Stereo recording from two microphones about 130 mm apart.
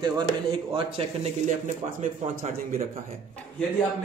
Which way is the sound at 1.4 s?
70° right (ahead or behind).